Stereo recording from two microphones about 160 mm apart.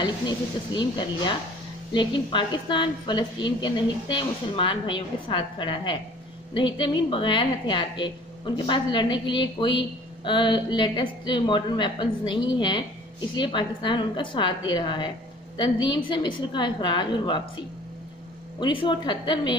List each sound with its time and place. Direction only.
0.0 s a woman's voice: 30° left (ahead or behind)
18.6 s a woman's voice: 30° left (ahead or behind)